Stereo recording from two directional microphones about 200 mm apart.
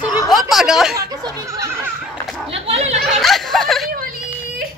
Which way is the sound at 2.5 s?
30° right (ahead or behind).